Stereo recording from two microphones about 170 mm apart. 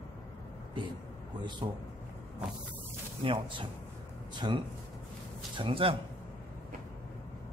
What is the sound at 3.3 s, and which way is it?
A man's voice, 30° right (ahead or behind).